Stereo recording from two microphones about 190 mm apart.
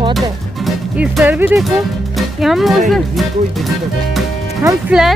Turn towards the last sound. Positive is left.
turn(degrees=-5)  # may be behind; listen again after turning